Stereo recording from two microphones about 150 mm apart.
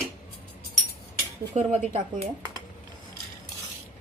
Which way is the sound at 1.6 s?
50° right (ahead or behind).